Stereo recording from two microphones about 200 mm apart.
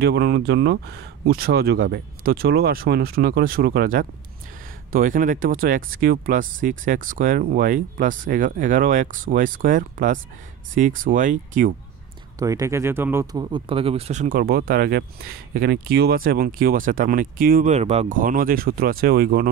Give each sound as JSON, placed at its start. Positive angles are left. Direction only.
{"t": 0.0, "sound": "speech", "side_deg": -55}
{"t": 12.4, "sound": "speech", "side_deg": -15}